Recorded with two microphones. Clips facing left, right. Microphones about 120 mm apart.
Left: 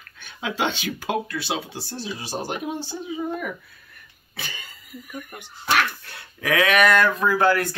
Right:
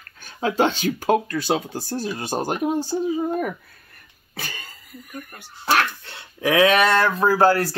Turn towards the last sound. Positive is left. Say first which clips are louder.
# right 3 dB
turn(degrees=-35)  # may be behind; listen again after turning